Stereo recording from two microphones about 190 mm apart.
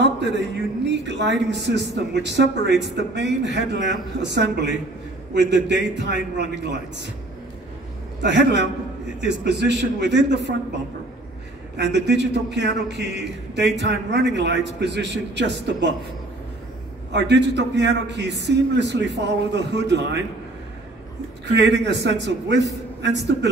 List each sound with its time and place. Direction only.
0.0 s a man's voice: 65° right (ahead or behind)
8.2 s a man's voice: 65° right (ahead or behind)
11.7 s a man's voice: 65° right (ahead or behind)
17.1 s a man's voice: 65° right (ahead or behind)
21.5 s a man's voice: 65° right (ahead or behind)